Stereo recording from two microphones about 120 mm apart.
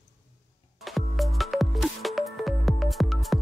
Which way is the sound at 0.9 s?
Centre (ahead or behind).